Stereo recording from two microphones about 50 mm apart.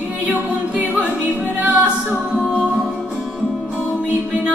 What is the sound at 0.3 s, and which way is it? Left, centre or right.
Music, right.